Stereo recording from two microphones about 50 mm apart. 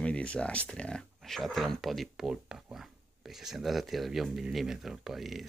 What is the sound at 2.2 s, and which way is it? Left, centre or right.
Speech, centre.